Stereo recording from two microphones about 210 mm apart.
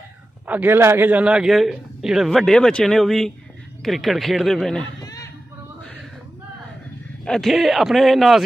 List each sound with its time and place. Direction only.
0.5 s a man's voice: 10° right (ahead or behind)
5.0 s chatter: 15° left (ahead or behind)
7.2 s a man's voice: centre (ahead or behind)